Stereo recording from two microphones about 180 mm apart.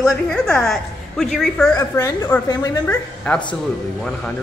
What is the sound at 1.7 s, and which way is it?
A woman's voice, 20° left (ahead or behind).